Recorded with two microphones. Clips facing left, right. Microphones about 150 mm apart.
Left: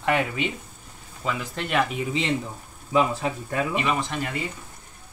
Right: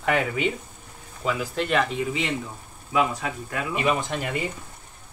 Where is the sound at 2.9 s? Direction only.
30° left (ahead or behind).